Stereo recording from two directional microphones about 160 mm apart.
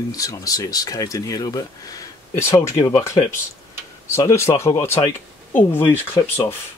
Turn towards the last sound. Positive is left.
turn(degrees=15)  # may be behind; listen again after turning